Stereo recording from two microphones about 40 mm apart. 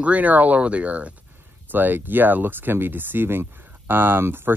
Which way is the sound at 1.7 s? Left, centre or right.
Right.